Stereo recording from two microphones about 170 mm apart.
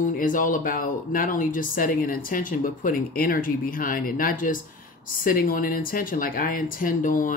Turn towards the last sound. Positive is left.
turn(degrees=50)  # may be behind; listen again after turning